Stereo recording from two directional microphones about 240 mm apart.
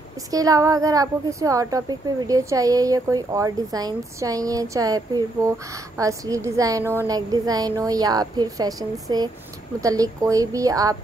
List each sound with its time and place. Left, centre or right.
0.3 s speech: centre